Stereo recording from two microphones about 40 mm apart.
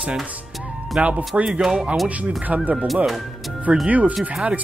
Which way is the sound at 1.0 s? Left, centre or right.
Right.